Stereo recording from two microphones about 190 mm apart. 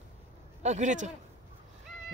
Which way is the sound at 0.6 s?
40° right (ahead or behind).